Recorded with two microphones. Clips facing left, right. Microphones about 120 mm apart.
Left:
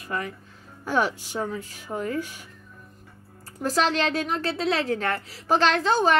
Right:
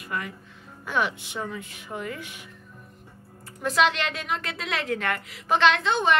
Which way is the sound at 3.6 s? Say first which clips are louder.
Even; 35° left (ahead or behind).